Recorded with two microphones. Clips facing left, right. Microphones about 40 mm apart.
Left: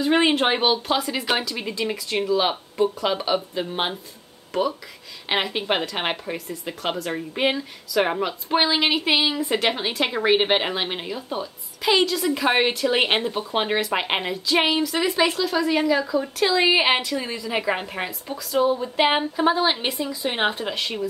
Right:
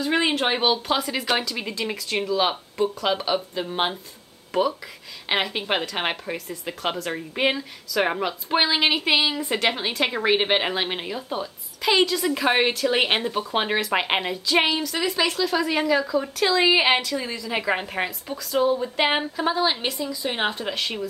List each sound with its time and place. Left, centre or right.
0.0 s a woman's voice: centre
0.7 s a woman's voice: centre
15.4 s speech: centre
17.5 s speech: centre
19.3 s a woman's voice: centre
20.2 s a woman's voice: centre